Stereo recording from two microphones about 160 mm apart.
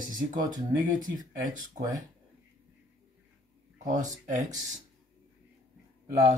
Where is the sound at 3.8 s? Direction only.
50° right (ahead or behind).